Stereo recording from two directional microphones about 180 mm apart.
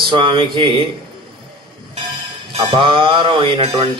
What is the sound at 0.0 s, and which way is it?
Speech, 25° right (ahead or behind).